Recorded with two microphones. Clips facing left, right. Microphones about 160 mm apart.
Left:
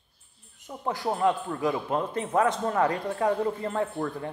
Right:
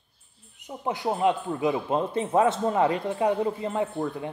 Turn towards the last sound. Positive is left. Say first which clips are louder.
# right 1 dB
turn(degrees=-15)  # may be behind; listen again after turning